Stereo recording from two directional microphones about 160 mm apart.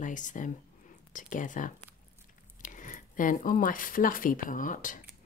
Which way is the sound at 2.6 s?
55° left (ahead or behind).